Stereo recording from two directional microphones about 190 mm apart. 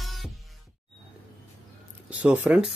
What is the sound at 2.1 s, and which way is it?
Speech, 10° right (ahead or behind).